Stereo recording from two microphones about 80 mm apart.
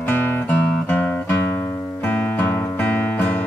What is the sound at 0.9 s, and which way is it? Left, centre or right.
Music, left.